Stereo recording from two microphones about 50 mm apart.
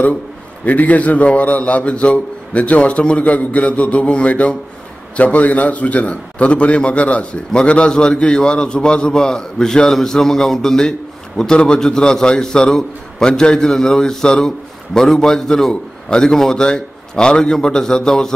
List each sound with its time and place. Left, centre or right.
0.7 s a man's voice: left; by 18.3 s centre